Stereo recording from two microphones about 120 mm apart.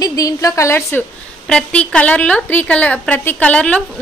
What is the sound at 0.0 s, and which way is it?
A woman's voice, 30° left (ahead or behind).